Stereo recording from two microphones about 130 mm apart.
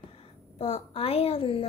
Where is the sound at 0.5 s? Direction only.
50° left (ahead or behind).